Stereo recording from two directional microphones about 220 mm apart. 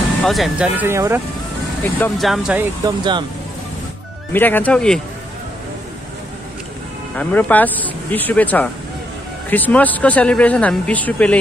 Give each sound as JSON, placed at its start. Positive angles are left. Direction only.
{"t": 0.2, "sound": "speech", "side_deg": 0}
{"t": 1.8, "sound": "speech", "side_deg": 10}
{"t": 2.8, "sound": "speech", "side_deg": -20}
{"t": 4.3, "sound": "speech", "side_deg": 10}
{"t": 7.2, "sound": "speech", "side_deg": 5}